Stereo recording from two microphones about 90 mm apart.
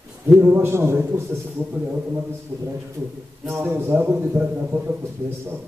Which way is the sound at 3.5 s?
25° right (ahead or behind).